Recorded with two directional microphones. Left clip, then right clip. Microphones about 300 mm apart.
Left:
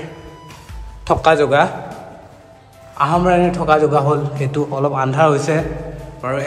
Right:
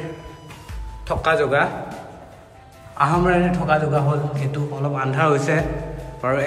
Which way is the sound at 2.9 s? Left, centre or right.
Centre.